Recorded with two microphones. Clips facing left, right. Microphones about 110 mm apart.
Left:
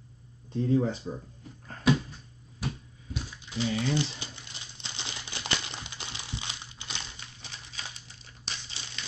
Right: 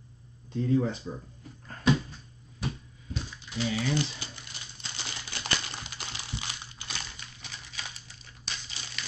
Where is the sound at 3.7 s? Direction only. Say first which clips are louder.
Even; 25° left (ahead or behind).